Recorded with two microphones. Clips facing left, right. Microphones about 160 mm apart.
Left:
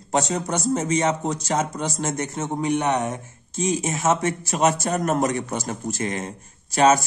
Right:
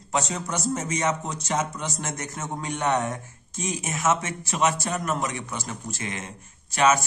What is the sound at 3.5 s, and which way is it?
Speech, 30° left (ahead or behind).